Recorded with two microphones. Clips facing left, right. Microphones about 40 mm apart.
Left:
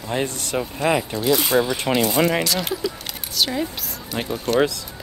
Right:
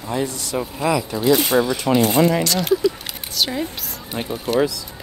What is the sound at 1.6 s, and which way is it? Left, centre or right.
Speech, left.